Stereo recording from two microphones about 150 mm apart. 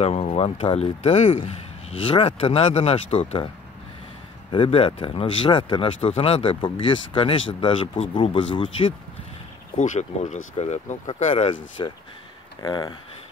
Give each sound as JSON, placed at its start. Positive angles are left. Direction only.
{"t": 0.0, "sound": "speech", "side_deg": 45}
{"t": 4.5, "sound": "speech", "side_deg": 35}
{"t": 9.8, "sound": "speech", "side_deg": 55}
{"t": 12.6, "sound": "speech", "side_deg": 25}